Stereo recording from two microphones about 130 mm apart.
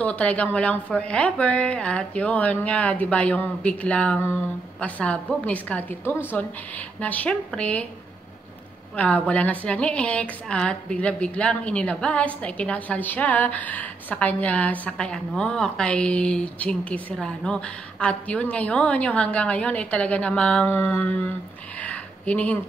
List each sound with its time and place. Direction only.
0.0 s a woman's voice: 10° left (ahead or behind)
8.9 s a woman's voice: 10° left (ahead or behind)
21.8 s a sound: 10° left (ahead or behind)